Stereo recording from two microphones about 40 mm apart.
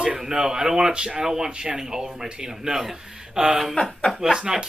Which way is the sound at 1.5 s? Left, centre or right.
Right.